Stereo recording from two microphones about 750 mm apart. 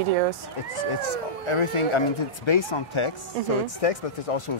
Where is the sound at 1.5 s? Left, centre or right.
Left.